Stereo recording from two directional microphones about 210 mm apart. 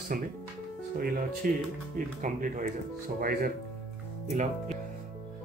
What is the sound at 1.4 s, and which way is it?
Speech, 40° right (ahead or behind).